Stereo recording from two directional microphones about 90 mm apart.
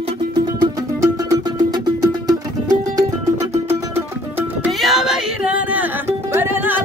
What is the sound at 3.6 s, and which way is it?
Music, 25° right (ahead or behind).